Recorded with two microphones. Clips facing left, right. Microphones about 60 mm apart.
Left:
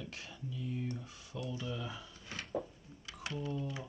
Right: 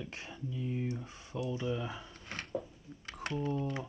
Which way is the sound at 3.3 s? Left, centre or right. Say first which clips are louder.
Right 5 dB; right.